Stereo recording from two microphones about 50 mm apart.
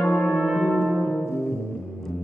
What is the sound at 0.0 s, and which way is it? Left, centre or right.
Brass instrument, centre.